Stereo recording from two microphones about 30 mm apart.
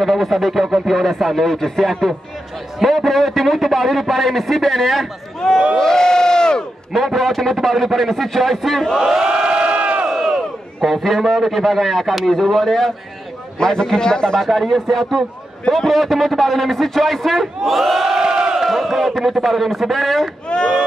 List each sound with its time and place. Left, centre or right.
0.0 s a man's voice: centre
5.8 s crowd: centre
6.9 s a man's voice: centre
9.0 s crowd: centre
9.3 s crowd: right
10.1 s a man's voice: centre
13.6 s a man's voice: left
14.4 s a man's voice: centre
18.1 s a sound: right
18.6 s chant: centre
19.3 s a man's voice: centre
20.4 s a sound: left